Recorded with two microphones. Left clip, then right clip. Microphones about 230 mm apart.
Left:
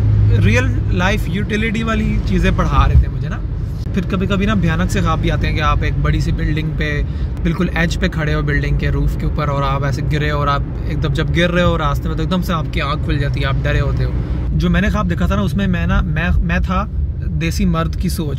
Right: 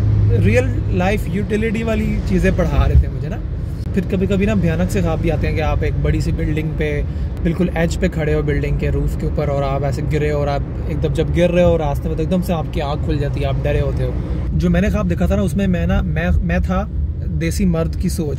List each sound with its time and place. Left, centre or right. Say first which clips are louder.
0.3 s vehicle: even; centre
1.0 s speech: left 2 dB; centre
3.9 s speech: right 1 dB; centre
9.5 s speech: left 1 dB; left
9.8 s speech: right 1 dB; centre
10.3 s speech: left 5 dB; left
11.0 s speech: right 1 dB; centre